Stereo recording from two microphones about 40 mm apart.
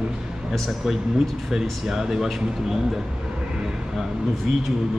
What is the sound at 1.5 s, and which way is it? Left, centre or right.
Speech, centre.